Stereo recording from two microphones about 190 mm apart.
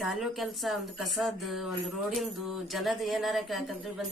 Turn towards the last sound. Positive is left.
turn(degrees=0)  # may be behind; listen again after turning